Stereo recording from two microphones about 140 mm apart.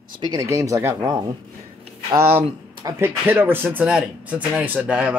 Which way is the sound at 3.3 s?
15° right (ahead or behind).